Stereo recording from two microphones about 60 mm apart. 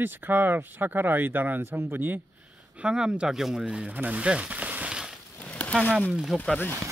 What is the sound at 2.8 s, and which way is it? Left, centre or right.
Speech, centre.